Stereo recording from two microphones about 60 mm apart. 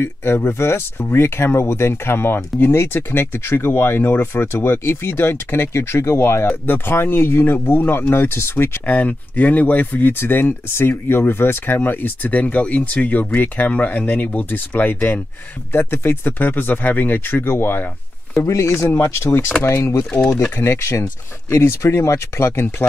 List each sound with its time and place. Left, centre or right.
0.0 s speech: left
6.5 s speech: left
8.8 s speech: left
15.7 s speech: left
18.4 s speech: left
20.1 s speech: centre
20.5 s speech: left